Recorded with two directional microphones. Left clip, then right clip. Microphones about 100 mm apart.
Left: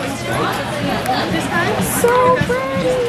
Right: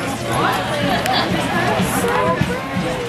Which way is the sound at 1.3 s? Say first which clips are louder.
Left 1 dB; 20° left (ahead or behind).